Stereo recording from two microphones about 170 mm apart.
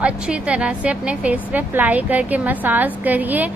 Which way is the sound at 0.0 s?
5° right (ahead or behind).